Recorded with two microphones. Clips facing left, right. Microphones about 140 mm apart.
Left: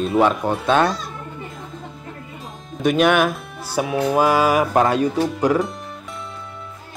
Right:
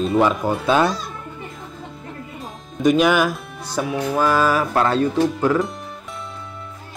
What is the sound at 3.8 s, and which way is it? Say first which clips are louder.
Music: left 2 dB; 20° left (ahead or behind).